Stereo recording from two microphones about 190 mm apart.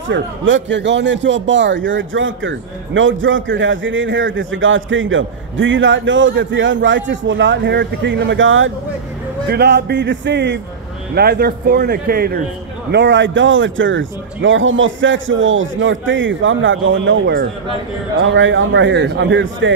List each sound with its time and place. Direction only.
0.1 s a man's voice: 80° right
9.5 s speech: 60° right (ahead or behind)
11.1 s speech: 55° right (ahead or behind)
12.9 s a man's voice: 70° right (ahead or behind)
18.1 s a man's voice: 85° right